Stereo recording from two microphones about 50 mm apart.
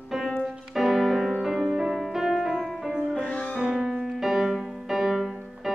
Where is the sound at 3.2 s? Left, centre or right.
Centre.